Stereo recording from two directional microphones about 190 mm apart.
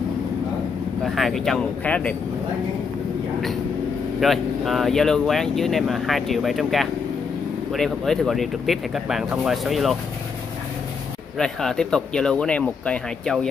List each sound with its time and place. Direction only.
1.0 s speech: centre (ahead or behind)
4.2 s speech: centre (ahead or behind)
11.3 s speech: 5° left (ahead or behind)